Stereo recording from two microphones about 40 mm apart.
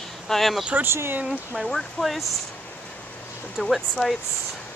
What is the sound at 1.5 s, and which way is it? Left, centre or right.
Speech, centre.